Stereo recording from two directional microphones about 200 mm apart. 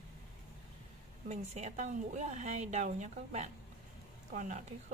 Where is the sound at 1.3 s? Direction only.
35° right (ahead or behind).